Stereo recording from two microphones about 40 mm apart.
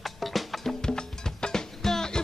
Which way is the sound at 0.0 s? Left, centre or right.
Centre.